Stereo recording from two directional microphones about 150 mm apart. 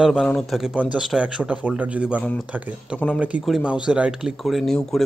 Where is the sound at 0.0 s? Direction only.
5° right (ahead or behind).